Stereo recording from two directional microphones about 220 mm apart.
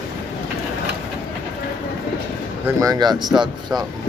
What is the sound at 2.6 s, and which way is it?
Speech, 15° right (ahead or behind).